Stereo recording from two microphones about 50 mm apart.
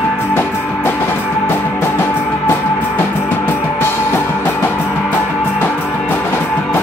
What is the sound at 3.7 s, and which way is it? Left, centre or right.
Music, left.